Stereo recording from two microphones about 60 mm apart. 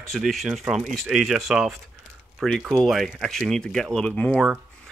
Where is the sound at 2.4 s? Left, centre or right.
Centre.